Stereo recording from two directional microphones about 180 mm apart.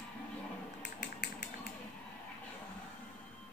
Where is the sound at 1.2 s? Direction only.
65° left (ahead or behind).